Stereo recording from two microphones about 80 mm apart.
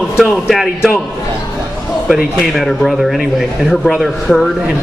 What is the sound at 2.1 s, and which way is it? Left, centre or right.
A man's voice, centre.